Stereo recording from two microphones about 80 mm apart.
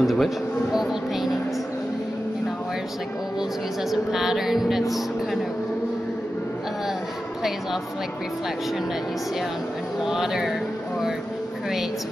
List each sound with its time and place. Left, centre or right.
0.0 s a sound: centre
3.9 s speech: centre
10.0 s speech: centre